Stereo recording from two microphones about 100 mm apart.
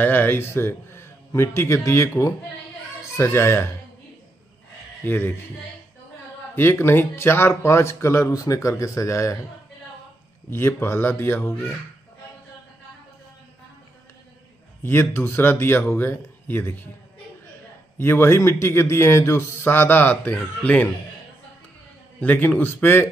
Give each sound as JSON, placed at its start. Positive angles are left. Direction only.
{"t": 0.0, "sound": "speech", "side_deg": 20}
{"t": 5.0, "sound": "speech", "side_deg": 20}
{"t": 6.5, "sound": "speech", "side_deg": 20}
{"t": 10.5, "sound": "speech", "side_deg": 25}
{"t": 14.8, "sound": "speech", "side_deg": 25}
{"t": 17.9, "sound": "speech", "side_deg": 25}
{"t": 22.2, "sound": "speech", "side_deg": 15}